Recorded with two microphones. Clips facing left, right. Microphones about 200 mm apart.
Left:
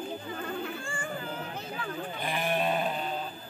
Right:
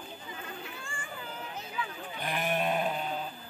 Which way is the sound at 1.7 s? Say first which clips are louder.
Left 4 dB; 50° left (ahead or behind).